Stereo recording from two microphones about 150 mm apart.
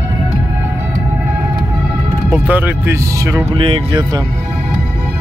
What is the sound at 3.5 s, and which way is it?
Speech, 35° right (ahead or behind).